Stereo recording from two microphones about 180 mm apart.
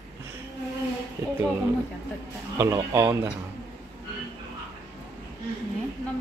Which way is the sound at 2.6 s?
15° right (ahead or behind).